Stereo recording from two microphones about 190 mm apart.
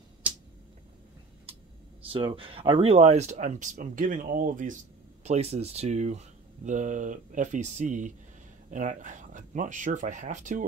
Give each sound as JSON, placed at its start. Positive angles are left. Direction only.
{"t": 2.0, "sound": "speech", "side_deg": -25}
{"t": 5.2, "sound": "speech", "side_deg": -35}